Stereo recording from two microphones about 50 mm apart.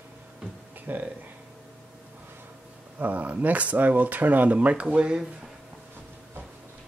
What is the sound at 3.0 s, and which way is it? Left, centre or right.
Speech, right.